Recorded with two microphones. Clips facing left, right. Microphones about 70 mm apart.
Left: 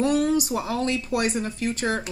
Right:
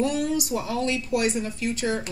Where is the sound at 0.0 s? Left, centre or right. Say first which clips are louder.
Left 3 dB; left.